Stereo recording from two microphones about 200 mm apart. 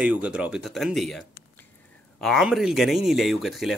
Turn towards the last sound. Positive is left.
turn(degrees=0)  # may be behind; listen again after turning